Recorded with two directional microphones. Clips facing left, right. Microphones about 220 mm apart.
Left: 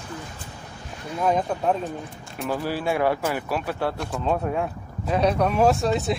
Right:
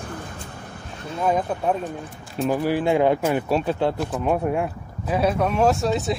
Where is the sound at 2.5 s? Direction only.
15° right (ahead or behind).